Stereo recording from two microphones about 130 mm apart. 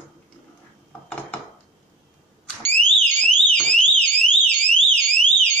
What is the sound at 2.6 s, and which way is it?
Alarm, 15° left (ahead or behind).